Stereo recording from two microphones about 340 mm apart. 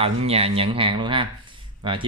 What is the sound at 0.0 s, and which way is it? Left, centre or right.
Speech, centre.